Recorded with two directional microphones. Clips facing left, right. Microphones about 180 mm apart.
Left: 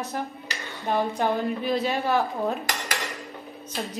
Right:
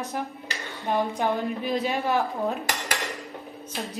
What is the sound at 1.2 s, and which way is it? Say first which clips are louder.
A woman's voice: left 1 dB; 15° right (ahead or behind).